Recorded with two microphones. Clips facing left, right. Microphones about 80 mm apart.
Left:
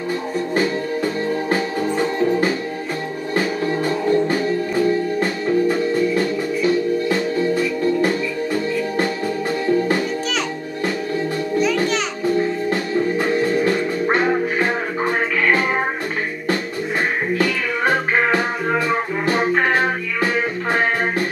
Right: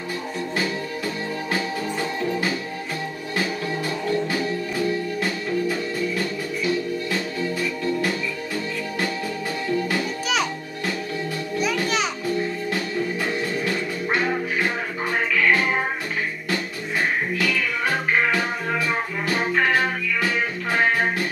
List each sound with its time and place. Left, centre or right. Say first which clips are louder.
0.6 s music: left 7 dB; left
9.7 s music: left 6 dB; left
12.4 s music: left 6 dB; left
17.4 s music: left 4 dB; left